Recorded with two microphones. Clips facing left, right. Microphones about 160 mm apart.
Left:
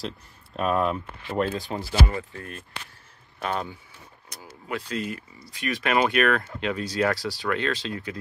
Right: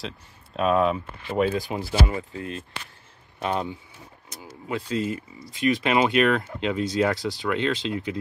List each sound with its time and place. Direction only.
0.6 s speech: centre (ahead or behind)
1.8 s speech: 15° right (ahead or behind)